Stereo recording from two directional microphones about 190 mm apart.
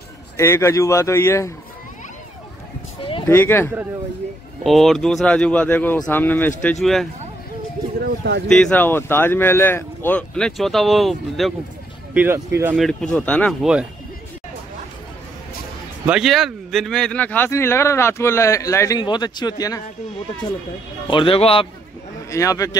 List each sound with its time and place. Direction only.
0.4 s speech: 15° left (ahead or behind)
3.0 s a sound: 25° left (ahead or behind)
3.3 s speech: 10° left (ahead or behind)
4.6 s speech: centre (ahead or behind)
8.0 s a sound: 60° right (ahead or behind)
8.5 s speech: 5° left (ahead or behind)
12.1 s speech: 10° right (ahead or behind)
12.7 s speech: 5° left (ahead or behind)
16.1 s speech: centre (ahead or behind); by 19.8 s 20° left (ahead or behind)
21.1 s speech: 25° left (ahead or behind)
22.3 s speech: 15° left (ahead or behind)